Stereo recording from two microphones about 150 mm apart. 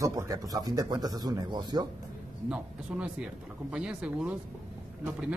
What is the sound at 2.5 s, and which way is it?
Speech, 5° right (ahead or behind).